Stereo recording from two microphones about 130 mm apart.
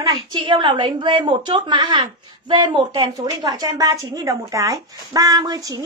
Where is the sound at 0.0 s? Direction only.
30° right (ahead or behind).